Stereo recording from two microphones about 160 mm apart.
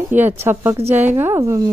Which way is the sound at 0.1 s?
10° right (ahead or behind).